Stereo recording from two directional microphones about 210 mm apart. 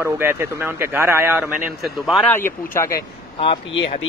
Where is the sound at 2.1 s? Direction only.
5° left (ahead or behind).